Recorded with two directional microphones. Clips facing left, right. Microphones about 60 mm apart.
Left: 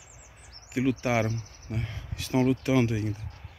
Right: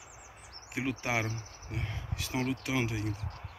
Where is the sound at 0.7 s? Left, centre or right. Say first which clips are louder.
Left 7 dB; centre.